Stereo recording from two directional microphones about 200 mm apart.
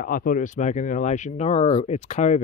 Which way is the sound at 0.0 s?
45° left (ahead or behind).